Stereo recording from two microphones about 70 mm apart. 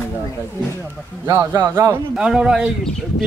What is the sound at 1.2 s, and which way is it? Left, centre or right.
Speech, right.